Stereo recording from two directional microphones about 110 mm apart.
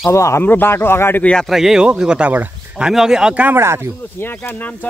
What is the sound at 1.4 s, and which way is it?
Speech, centre (ahead or behind).